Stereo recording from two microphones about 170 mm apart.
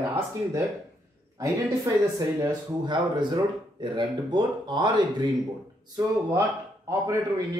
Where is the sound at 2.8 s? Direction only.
25° right (ahead or behind).